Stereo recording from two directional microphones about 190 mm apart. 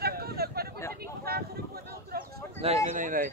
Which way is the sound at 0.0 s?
55° right (ahead or behind).